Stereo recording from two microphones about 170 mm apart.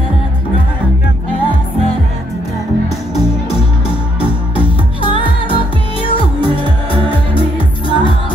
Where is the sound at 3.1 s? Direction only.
35° left (ahead or behind).